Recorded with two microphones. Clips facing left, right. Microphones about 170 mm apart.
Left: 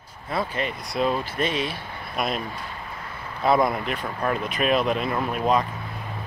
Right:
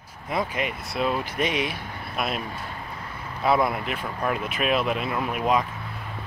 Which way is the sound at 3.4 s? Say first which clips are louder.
Left 2 dB; 5° right (ahead or behind).